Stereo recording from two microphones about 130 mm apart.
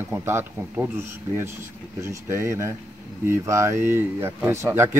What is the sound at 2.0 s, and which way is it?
A man's voice, 20° right (ahead or behind).